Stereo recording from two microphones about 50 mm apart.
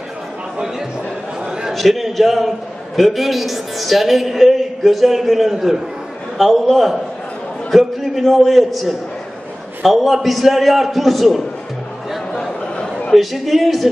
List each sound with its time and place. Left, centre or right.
1.7 s a man's voice: centre
8.0 s a man's voice: centre
12.3 s a sound: centre
13.1 s a man's voice: centre